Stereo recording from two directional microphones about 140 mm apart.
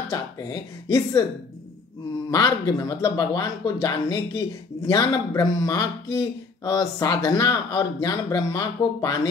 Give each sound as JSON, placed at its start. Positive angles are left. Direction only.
{"t": 0.1, "sound": "speech", "side_deg": 25}
{"t": 2.3, "sound": "speech", "side_deg": 30}